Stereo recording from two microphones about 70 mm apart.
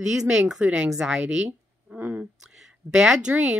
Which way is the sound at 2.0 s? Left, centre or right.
Right.